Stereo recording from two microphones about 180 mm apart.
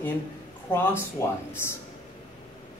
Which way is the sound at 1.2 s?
15° left (ahead or behind).